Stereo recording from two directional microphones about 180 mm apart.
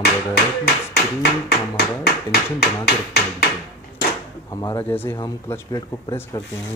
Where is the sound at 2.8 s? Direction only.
65° left (ahead or behind).